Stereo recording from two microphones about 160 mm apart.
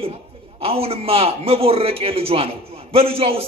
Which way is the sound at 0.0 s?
35° right (ahead or behind).